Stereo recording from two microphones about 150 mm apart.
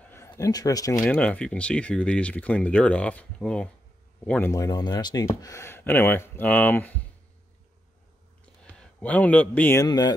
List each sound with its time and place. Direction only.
0.0 s a sound: 15° left (ahead or behind)
0.3 s speech: 25° left (ahead or behind)
1.0 s speech: 10° left (ahead or behind)
4.3 s speech: 15° left (ahead or behind)
8.6 s speech: 5° left (ahead or behind)
9.8 s speech: 25° left (ahead or behind)